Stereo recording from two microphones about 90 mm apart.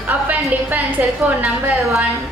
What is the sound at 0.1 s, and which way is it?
A woman's voice, 20° right (ahead or behind).